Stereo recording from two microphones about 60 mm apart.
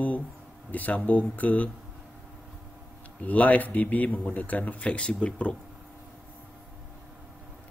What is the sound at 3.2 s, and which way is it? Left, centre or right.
Speech, left.